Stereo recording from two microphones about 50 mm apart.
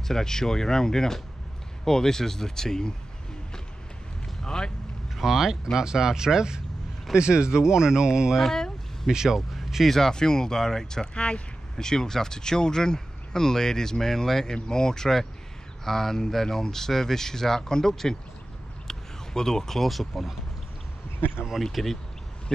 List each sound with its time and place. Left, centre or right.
0.1 s speech: centre
4.4 s speech: centre
5.1 s speech: centre
8.4 s a sound: centre
9.1 s speech: centre
9.9 s speech: centre
21.8 s speech: centre